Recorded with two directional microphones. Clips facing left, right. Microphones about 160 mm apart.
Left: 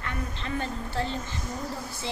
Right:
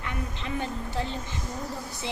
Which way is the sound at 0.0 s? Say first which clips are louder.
Even; 15° right (ahead or behind).